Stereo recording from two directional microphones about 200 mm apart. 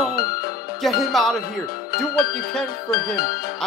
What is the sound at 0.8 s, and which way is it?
Speech, centre (ahead or behind).